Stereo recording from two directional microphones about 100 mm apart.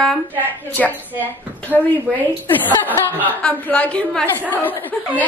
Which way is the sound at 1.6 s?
15° left (ahead or behind).